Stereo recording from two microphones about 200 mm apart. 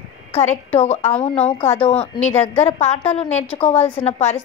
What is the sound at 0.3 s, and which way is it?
A woman's voice, 35° left (ahead or behind).